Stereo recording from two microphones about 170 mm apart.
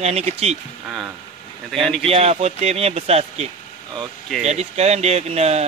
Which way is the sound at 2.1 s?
35° right (ahead or behind).